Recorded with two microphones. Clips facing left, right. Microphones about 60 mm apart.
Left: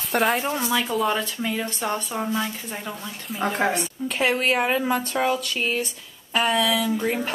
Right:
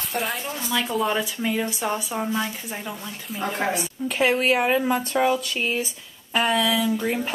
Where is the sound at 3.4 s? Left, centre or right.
Centre.